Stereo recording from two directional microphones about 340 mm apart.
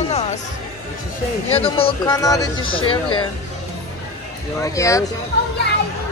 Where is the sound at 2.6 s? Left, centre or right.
Left.